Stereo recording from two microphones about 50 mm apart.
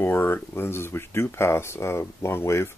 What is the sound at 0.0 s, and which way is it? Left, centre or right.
Speech, left.